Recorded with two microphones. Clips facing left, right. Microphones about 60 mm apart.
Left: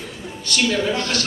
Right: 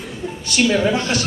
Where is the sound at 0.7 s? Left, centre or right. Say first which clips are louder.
Right 4 dB; centre.